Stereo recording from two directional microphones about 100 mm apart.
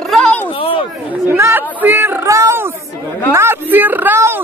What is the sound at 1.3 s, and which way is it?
A man's voice, 25° right (ahead or behind).